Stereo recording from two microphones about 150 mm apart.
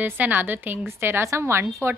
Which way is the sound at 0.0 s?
10° right (ahead or behind).